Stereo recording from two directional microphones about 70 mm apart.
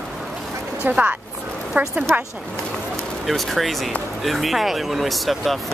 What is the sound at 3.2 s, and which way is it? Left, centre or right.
Speech, centre.